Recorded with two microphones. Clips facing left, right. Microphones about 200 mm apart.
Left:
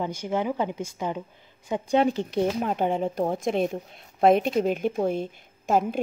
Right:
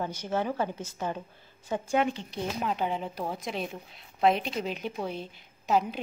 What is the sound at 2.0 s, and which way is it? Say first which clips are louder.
Speech: left 6 dB; 35° left (ahead or behind).